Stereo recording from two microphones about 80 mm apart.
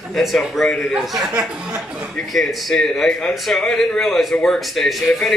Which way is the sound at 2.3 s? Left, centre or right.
Centre.